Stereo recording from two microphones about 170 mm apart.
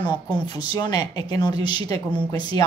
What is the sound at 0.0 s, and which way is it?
A woman's voice, 30° left (ahead or behind).